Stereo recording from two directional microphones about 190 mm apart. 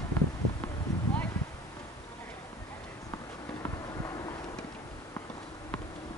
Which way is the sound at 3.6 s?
15° left (ahead or behind).